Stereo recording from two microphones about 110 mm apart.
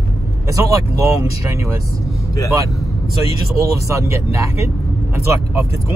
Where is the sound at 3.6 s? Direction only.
30° right (ahead or behind).